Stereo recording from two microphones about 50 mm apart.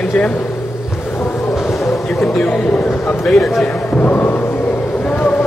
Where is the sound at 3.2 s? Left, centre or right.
Centre.